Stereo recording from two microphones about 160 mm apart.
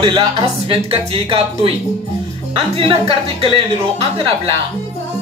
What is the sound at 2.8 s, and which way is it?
Speech, 35° right (ahead or behind).